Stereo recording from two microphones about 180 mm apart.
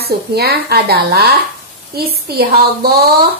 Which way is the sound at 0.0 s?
60° right (ahead or behind).